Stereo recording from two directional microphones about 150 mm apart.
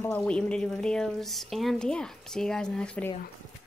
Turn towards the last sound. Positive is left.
turn(degrees=10)  # may be behind; listen again after turning